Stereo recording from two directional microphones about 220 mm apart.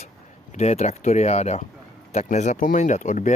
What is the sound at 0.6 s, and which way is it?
Speech, 30° left (ahead or behind).